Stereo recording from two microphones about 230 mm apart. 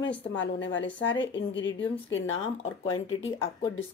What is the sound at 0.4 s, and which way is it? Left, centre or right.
Speech, left.